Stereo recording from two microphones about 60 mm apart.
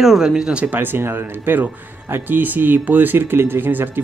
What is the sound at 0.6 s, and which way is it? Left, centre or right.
Speech, right.